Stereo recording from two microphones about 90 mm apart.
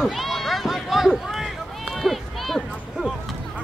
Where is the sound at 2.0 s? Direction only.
Centre (ahead or behind).